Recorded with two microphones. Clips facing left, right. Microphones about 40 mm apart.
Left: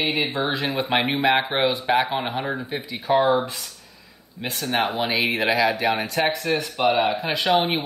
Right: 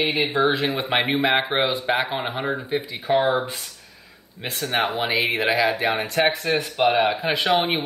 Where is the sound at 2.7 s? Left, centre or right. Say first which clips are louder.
Even; right.